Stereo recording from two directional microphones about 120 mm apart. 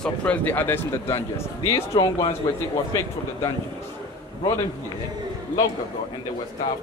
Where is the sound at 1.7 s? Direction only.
40° left (ahead or behind).